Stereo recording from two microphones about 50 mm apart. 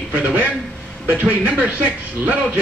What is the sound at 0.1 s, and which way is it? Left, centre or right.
Speech, right.